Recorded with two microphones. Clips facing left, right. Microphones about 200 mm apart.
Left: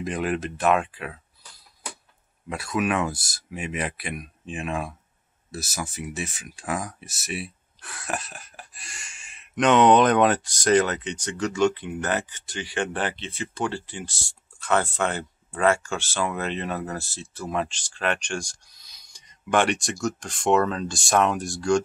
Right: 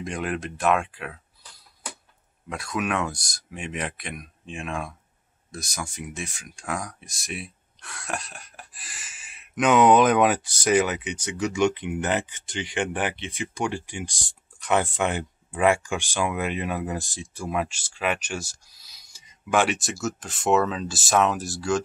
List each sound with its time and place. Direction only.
0.0 s speech: centre (ahead or behind)
2.5 s speech: 5° left (ahead or behind)